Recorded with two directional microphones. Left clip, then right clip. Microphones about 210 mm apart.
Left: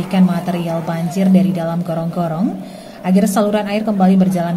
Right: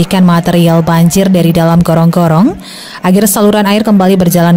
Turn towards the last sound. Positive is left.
turn(degrees=-50)  # may be behind; listen again after turning